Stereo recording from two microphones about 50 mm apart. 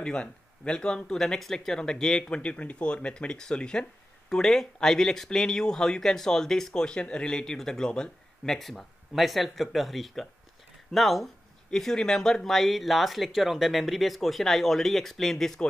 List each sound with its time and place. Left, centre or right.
0.0 s speech: centre
1.2 s speech: centre
8.5 s speech: centre